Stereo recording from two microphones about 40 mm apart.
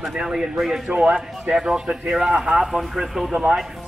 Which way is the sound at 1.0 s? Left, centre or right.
Right.